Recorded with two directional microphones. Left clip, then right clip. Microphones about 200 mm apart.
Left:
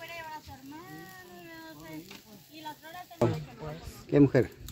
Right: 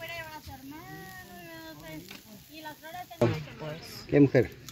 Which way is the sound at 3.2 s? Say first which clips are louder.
Right 1 dB; centre (ahead or behind).